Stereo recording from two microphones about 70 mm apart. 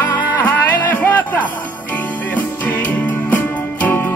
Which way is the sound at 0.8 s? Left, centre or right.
Left.